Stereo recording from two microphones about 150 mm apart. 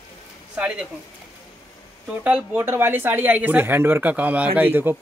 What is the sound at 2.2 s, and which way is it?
Speech, 10° right (ahead or behind).